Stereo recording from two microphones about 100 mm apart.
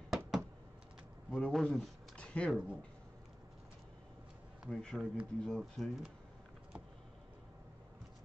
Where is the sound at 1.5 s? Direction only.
5° left (ahead or behind).